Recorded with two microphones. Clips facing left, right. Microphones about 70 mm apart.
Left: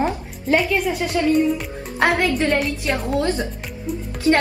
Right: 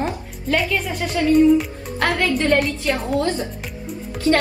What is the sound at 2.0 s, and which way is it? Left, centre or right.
Speech, left.